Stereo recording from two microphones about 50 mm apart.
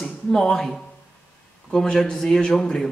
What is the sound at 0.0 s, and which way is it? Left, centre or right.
Speech, centre.